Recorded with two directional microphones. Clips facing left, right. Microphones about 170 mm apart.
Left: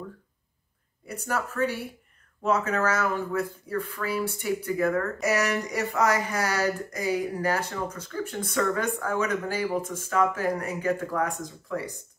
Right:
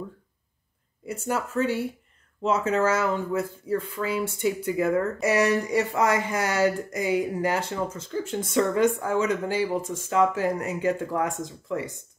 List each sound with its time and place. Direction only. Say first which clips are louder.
1.0 s speech: right 2 dB; 25° right (ahead or behind)